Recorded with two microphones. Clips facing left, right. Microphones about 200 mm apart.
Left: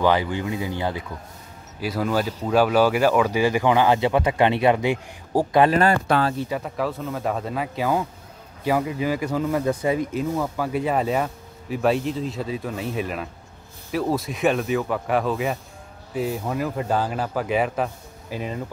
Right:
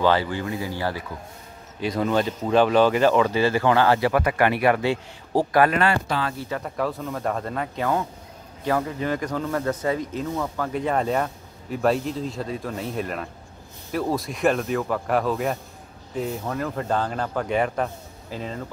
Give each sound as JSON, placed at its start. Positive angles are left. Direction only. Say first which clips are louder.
{"t": 0.0, "sound": "speech", "louder": "left 1 dB", "side_deg": 15}
{"t": 1.8, "sound": "a man's voice", "louder": "right 1 dB", "side_deg": 5}
{"t": 5.7, "sound": "speech", "louder": "left 3 dB", "side_deg": 40}
{"t": 6.5, "sound": "a man's voice", "louder": "left 1 dB", "side_deg": 0}